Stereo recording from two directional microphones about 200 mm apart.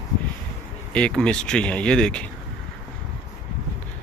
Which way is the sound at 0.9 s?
5° left (ahead or behind).